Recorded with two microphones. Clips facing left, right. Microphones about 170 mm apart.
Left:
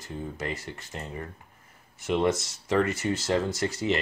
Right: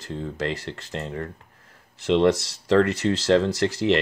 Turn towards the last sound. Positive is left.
turn(degrees=-70)  # may be behind; listen again after turning